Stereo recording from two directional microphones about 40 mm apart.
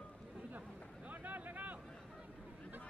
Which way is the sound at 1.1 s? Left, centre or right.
Right.